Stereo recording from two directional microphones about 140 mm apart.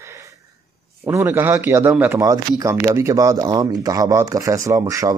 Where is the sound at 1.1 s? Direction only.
15° right (ahead or behind).